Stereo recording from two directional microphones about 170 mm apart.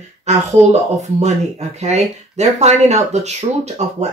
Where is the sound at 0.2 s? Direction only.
40° right (ahead or behind).